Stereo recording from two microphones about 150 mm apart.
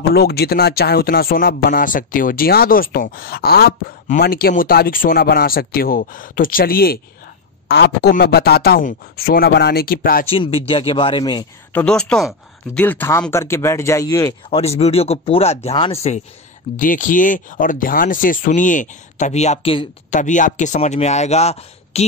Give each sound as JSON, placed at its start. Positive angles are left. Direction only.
{"t": 0.1, "sound": "a man's voice", "side_deg": 90}
{"t": 10.3, "sound": "speech", "side_deg": 35}
{"t": 11.7, "sound": "speech", "side_deg": 5}
{"t": 14.5, "sound": "speech", "side_deg": 45}
{"t": 16.7, "sound": "speech", "side_deg": 60}
{"t": 20.1, "sound": "speech", "side_deg": 55}